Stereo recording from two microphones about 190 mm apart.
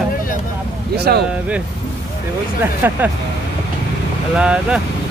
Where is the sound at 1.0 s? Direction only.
55° right (ahead or behind).